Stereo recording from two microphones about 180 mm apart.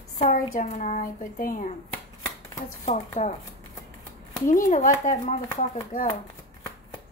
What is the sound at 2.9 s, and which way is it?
Speech, 40° left (ahead or behind).